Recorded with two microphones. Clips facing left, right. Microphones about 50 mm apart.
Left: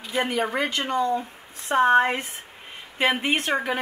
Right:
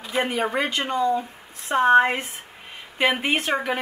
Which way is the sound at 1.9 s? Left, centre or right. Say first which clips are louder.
Right 6 dB; centre.